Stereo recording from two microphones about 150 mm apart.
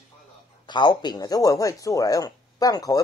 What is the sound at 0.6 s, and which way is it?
Speech, 30° left (ahead or behind).